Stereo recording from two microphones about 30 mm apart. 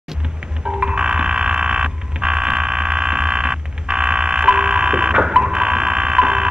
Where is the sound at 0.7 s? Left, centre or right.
Right.